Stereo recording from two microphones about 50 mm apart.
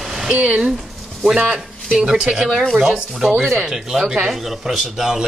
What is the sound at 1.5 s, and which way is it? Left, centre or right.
Speech, centre.